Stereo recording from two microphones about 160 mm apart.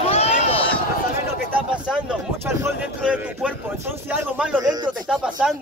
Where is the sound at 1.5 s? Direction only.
10° right (ahead or behind).